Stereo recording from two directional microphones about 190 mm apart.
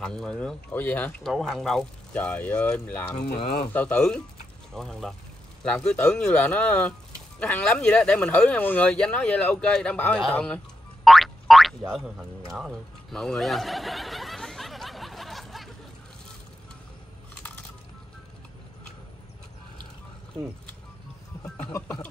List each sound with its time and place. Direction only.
0.0 s speech: 5° left (ahead or behind)
3.3 s speech: 35° left (ahead or behind)
3.7 s speech: 5° left (ahead or behind)
11.1 s boing: centre (ahead or behind)
21.7 s speech: 10° left (ahead or behind)